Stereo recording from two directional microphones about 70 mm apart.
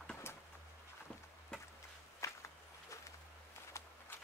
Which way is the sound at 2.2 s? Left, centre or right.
Left.